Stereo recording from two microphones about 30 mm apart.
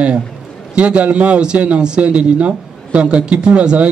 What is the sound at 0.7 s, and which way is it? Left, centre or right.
Speech, right.